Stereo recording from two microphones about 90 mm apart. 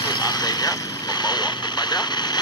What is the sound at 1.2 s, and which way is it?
Speech, 50° left (ahead or behind).